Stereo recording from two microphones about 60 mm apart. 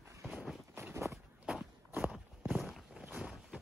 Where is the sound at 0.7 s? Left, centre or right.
Right.